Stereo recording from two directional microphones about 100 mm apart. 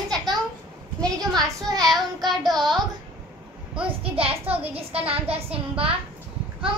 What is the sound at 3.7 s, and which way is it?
A child's voice, 65° right (ahead or behind).